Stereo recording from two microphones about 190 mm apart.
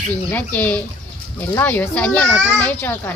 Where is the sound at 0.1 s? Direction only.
10° left (ahead or behind).